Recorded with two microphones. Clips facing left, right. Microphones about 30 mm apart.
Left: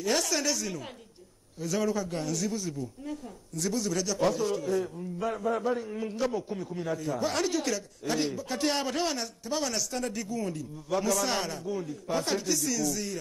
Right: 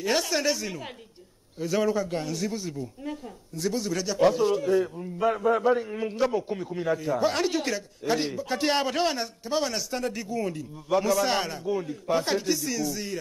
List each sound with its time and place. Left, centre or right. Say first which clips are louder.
0.2 s a man's voice: right 3 dB; right